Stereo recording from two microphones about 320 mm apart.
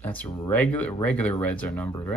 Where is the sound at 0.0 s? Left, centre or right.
Centre.